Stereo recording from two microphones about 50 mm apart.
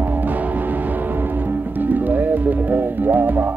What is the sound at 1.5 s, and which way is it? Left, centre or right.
Music, right.